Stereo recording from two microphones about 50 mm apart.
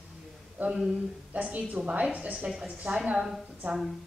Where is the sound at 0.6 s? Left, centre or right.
Right.